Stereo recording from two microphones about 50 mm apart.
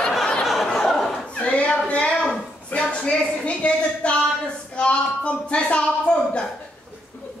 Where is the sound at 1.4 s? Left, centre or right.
Left.